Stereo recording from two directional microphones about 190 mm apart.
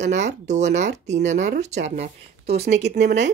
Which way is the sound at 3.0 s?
60° right (ahead or behind).